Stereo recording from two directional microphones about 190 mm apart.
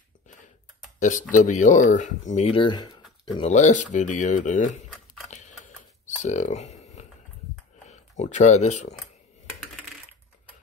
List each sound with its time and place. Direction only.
1.3 s speech: 40° left (ahead or behind); by 2.9 s 25° left (ahead or behind)
3.3 s speech: 35° left (ahead or behind)
4.9 s a sound: centre (ahead or behind)
5.3 s typing: 40° left (ahead or behind)
8.2 s speech: 40° left (ahead or behind)